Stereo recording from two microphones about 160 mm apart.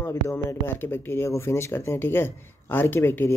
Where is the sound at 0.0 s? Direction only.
15° left (ahead or behind).